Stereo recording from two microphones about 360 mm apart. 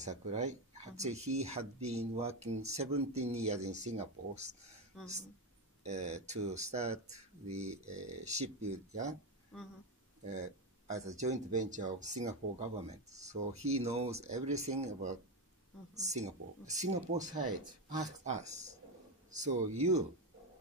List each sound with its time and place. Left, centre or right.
0.0 s speech: centre
4.9 s speech: centre
5.9 s speech: centre
10.9 s speech: centre